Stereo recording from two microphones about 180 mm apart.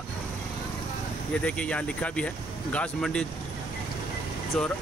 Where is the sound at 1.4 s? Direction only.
5° left (ahead or behind).